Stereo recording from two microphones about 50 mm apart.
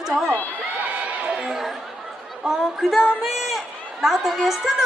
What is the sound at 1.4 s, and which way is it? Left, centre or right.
Chatter, centre.